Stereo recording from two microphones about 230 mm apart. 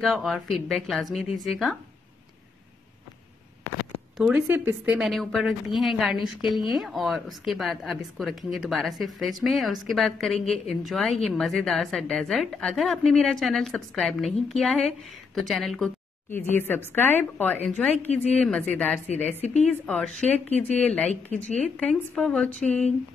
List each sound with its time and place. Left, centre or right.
0.0 s a woman's voice: centre
4.2 s a woman's voice: centre
19.4 s speech: left
20.6 s a woman's voice: centre